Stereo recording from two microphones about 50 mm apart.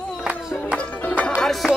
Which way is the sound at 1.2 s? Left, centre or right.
Centre.